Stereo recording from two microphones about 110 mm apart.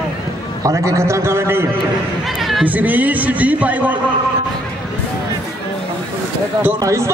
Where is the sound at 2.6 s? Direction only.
15° right (ahead or behind).